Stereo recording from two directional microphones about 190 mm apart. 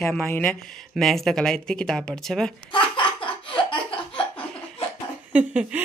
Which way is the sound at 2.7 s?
25° left (ahead or behind).